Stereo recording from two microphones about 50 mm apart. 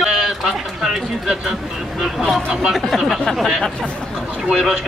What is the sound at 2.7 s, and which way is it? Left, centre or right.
Speech, centre.